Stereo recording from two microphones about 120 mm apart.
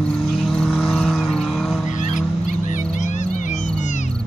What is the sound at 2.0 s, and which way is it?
Music, 90° left.